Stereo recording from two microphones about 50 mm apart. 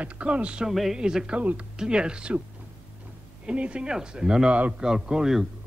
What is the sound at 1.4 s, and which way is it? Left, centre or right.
Speech, right.